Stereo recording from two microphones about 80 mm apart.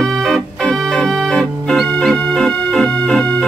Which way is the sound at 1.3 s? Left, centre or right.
Centre.